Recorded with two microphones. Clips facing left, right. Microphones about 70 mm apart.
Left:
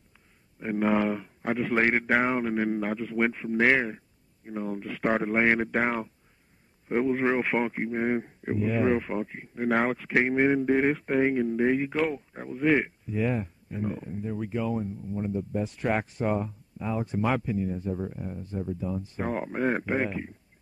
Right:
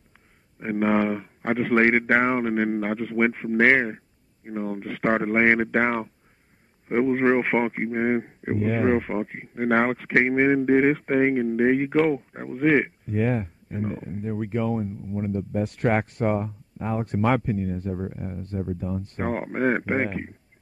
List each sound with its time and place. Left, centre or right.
0.6 s speech: right
14.8 s speech: right
15.3 s speech: right
18.1 s speech: right
19.0 s speech: right